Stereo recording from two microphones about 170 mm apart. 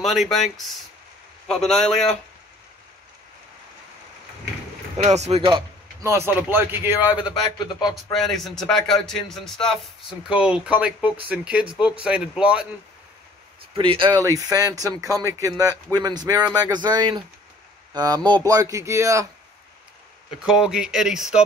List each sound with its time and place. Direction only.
0.0 s speech: centre (ahead or behind)
4.9 s speech: 40° right (ahead or behind)
6.0 s speech: 15° right (ahead or behind)
7.9 s speech: centre (ahead or behind)
13.7 s speech: 30° right (ahead or behind)
20.4 s speech: 5° right (ahead or behind)